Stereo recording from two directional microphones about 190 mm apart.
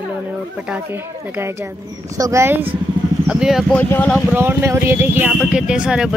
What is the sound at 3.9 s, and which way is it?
Speech, 10° left (ahead or behind).